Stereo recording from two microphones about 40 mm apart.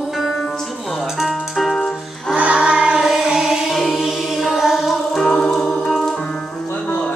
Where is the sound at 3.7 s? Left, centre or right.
Centre.